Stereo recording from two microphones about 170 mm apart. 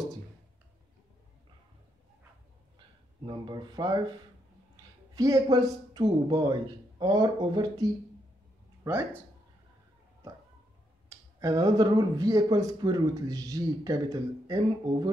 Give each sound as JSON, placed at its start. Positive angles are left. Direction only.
{"t": 3.3, "sound": "speech", "side_deg": -25}
{"t": 5.1, "sound": "speech", "side_deg": -20}
{"t": 11.1, "sound": "speech", "side_deg": -20}